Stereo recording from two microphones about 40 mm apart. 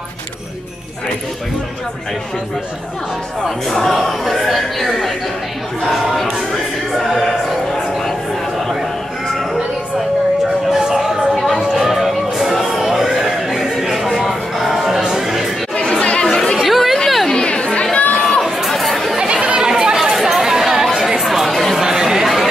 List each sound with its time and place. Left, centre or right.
3.4 s a man's voice: centre
6.9 s a sound: centre
10.7 s music: centre
11.3 s a sound: centre
13.6 s music: centre
15.7 s chatter: left
16.6 s chatter: centre
17.5 s chatter: left
17.9 s crowd: left
18.7 s chatter: centre
19.1 s chatter: right
20.1 s chatter: centre
21.7 s chatter: centre